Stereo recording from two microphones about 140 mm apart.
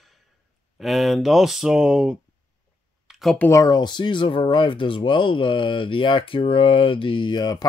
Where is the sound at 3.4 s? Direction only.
20° left (ahead or behind).